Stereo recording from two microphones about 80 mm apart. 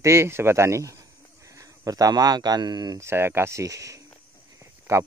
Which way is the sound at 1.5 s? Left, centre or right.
Right.